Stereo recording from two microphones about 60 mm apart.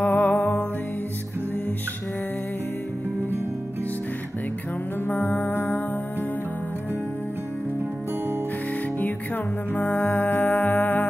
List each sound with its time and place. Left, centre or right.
0.0 s music: left
5.0 s music: left
9.8 s music: left